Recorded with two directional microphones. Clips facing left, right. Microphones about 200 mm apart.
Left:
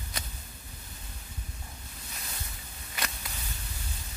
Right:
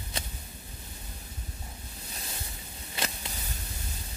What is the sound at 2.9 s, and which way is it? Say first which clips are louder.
Whip: right 2 dB; 25° right (ahead or behind).